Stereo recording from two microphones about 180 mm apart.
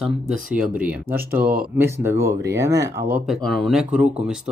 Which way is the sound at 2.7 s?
70° right (ahead or behind).